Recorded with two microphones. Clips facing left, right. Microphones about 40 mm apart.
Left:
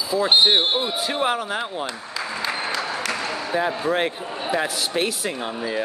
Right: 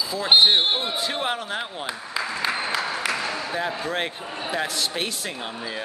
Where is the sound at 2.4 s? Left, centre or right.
Centre.